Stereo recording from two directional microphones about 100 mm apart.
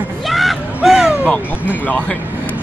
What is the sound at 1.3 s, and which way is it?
Speech, 15° left (ahead or behind).